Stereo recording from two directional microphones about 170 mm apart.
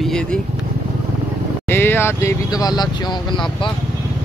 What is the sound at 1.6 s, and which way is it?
Speech, 15° left (ahead or behind).